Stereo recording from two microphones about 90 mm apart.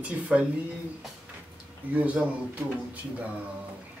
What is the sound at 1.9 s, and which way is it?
Speech, 15° right (ahead or behind).